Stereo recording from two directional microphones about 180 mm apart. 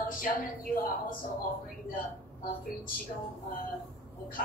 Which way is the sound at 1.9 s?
50° left (ahead or behind).